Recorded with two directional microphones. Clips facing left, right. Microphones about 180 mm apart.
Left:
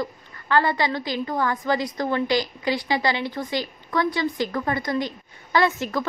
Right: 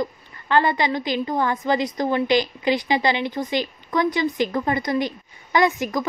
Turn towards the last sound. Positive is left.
turn(degrees=-15)  # may be behind; listen again after turning